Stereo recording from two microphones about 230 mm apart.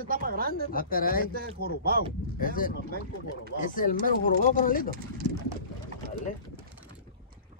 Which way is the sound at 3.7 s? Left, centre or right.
Left.